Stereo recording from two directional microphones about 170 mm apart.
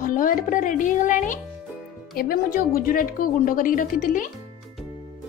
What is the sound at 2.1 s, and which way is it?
A woman's voice, 60° left (ahead or behind).